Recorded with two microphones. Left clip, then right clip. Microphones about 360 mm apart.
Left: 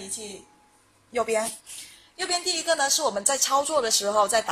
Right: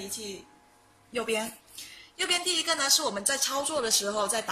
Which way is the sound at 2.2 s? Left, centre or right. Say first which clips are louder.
Even; centre.